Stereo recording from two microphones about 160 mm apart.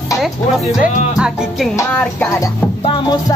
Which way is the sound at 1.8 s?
15° left (ahead or behind).